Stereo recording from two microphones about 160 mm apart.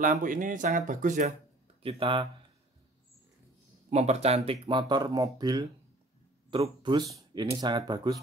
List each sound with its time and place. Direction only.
0.0 s speech: 55° right (ahead or behind)
1.8 s speech: 35° right (ahead or behind)
3.9 s speech: 40° right (ahead or behind)
4.5 s speech: 30° right (ahead or behind)